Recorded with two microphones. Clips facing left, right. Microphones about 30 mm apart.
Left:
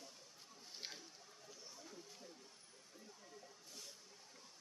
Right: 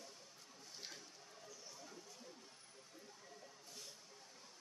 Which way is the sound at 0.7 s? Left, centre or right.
Centre.